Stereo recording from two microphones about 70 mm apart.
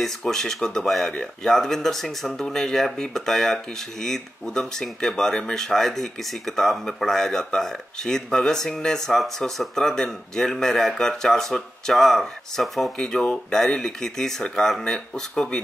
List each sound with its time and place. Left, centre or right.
0.0 s speech: centre